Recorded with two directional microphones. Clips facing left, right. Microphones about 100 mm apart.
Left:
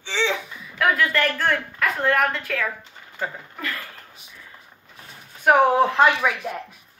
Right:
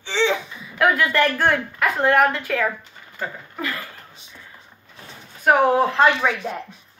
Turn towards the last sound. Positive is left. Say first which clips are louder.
# right 2 dB
turn(degrees=-30)  # may be behind; listen again after turning